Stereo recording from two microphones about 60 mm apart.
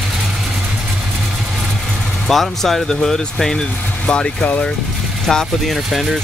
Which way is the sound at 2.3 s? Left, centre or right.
Centre.